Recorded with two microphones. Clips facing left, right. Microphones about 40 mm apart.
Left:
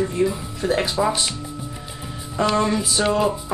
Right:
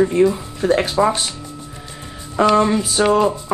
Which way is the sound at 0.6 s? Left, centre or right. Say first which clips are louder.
Right 5 dB; right.